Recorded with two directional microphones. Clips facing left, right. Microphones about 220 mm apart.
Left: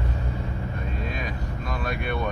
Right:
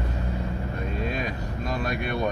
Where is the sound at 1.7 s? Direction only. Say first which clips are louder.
Right 1 dB; 40° right (ahead or behind).